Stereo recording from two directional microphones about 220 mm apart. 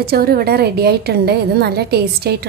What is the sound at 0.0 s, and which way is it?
A woman's voice, 45° right (ahead or behind).